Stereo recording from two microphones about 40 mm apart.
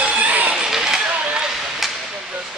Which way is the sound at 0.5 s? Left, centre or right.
Centre.